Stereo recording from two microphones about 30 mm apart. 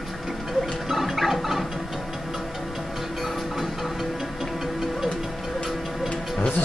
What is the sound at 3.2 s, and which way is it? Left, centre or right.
Music, centre.